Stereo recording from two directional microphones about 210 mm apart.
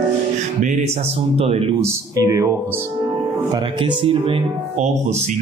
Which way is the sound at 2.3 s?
15° right (ahead or behind).